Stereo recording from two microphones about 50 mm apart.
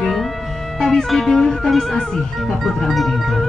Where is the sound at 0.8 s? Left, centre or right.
Centre.